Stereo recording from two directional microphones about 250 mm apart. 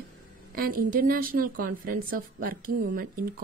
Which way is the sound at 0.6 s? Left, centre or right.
Right.